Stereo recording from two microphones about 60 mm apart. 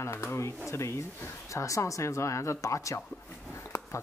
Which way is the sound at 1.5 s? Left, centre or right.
Left.